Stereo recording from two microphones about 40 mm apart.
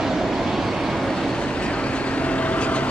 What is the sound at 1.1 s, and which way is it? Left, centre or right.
Vehicle, centre.